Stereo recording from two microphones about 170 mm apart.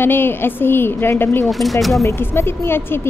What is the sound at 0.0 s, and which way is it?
A woman's voice, 15° left (ahead or behind).